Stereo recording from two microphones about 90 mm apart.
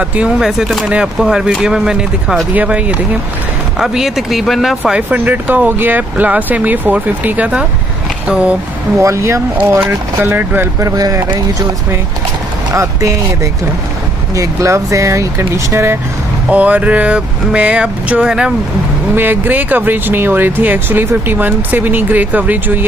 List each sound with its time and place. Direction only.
0.0 s speech: 15° right (ahead or behind)
3.8 s speech: 5° right (ahead or behind)
5.1 s speech: 20° right (ahead or behind)
9.0 s speech: 30° right (ahead or behind)
10.8 s speech: 45° right (ahead or behind)
12.7 s speech: 35° right (ahead or behind)
16.4 s speech: 15° right (ahead or behind)
19.1 s speech: 20° right (ahead or behind)